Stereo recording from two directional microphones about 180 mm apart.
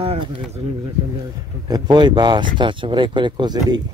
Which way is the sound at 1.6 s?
20° right (ahead or behind).